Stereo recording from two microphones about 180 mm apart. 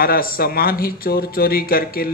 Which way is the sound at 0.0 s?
55° left (ahead or behind).